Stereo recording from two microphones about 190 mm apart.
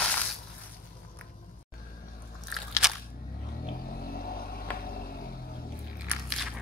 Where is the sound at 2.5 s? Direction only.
Centre (ahead or behind).